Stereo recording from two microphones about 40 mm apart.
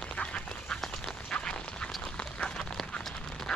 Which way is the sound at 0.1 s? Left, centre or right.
Left.